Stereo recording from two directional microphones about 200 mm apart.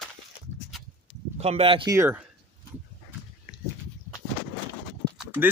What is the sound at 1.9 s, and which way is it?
Speech, 10° right (ahead or behind).